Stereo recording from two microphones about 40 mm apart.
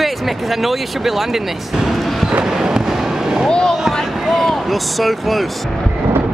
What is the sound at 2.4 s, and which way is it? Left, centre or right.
Fireworks, centre.